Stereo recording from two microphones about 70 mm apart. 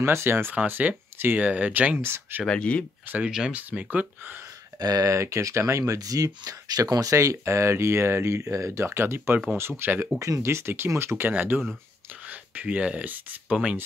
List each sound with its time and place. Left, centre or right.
0.0 s speech: right
0.6 s speech: right
2.0 s speech: right
2.4 s speech: centre
3.3 s speech: centre
3.9 s speech: right
4.7 s speech: right
5.0 s speech: right
5.9 s speech: right
10.1 s speech: right
12.3 s speech: right